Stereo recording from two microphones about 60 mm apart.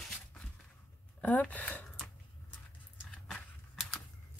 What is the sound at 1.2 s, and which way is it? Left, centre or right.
Speech, left.